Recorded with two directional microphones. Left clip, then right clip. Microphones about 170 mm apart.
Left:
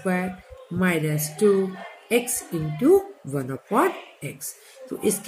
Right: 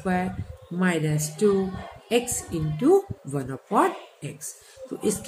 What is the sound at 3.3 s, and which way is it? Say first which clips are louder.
Speech: even; 20° left (ahead or behind).